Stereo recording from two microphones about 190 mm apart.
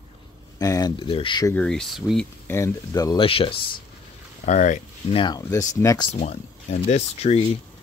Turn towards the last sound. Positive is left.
turn(degrees=35)  # may be behind; listen again after turning